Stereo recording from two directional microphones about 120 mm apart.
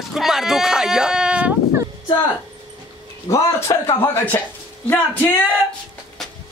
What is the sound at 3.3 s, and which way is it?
Speech, 30° left (ahead or behind).